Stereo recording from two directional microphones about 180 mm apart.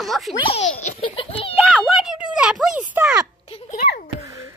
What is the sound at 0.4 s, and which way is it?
Music, 35° left (ahead or behind).